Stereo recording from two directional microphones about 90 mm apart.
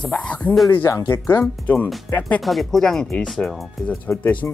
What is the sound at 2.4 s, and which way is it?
Speech, centre (ahead or behind).